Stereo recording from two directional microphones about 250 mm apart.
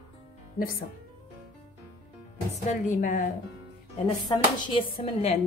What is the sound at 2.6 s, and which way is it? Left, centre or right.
Speech, left.